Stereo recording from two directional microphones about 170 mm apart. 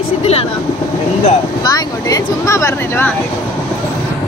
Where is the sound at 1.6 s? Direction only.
20° left (ahead or behind).